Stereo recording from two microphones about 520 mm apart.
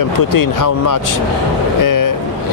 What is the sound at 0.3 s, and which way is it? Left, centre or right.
A man's voice, left.